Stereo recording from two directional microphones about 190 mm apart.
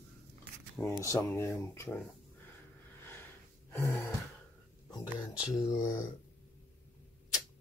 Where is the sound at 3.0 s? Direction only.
10° left (ahead or behind).